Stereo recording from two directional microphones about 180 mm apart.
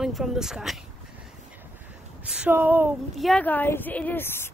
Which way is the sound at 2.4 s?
10° right (ahead or behind).